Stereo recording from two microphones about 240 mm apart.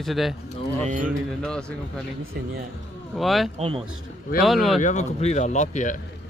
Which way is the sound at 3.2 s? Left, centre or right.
Centre.